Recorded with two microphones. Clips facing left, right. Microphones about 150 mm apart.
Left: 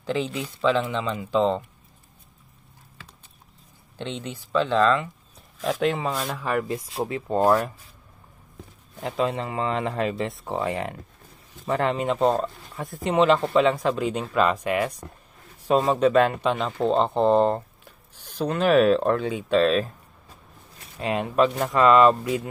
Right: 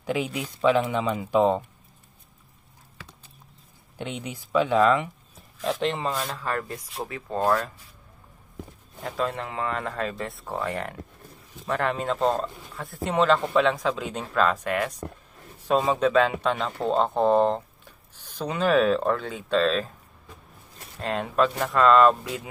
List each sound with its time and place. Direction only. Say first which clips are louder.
0.0 s speech: left 1 dB; 10° right (ahead or behind)
4.0 s speech: left 1 dB; 10° right (ahead or behind)
5.7 s a man's voice: left 2 dB; centre (ahead or behind)
6.4 s speech: left 4 dB; 15° left (ahead or behind)
7.0 s speech: left 5 dB; 25° left (ahead or behind)
9.0 s a man's voice: left 3 dB; 15° left (ahead or behind)
17.1 s speech: even; 10° right (ahead or behind)
18.1 s speech: left 4 dB; 10° left (ahead or behind)
21.0 s speech: left 2 dB; 5° left (ahead or behind)